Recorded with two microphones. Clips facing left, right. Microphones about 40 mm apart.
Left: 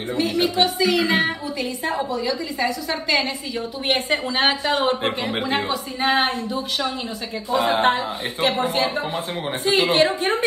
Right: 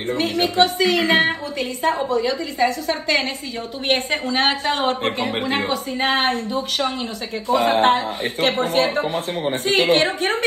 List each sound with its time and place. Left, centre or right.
0.1 s a woman's voice: right
4.3 s a woman's voice: centre
4.6 s a woman's voice: right